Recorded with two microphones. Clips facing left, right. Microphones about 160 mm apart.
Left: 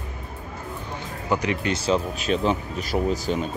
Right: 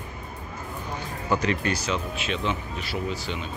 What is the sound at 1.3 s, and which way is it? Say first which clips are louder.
Speech: left 1 dB; 15° left (ahead or behind).